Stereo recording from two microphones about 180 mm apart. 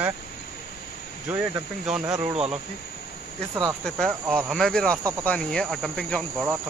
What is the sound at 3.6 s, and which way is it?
Cricket, centre (ahead or behind).